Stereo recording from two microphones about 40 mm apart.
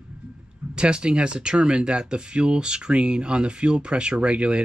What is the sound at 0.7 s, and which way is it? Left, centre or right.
Speech, right.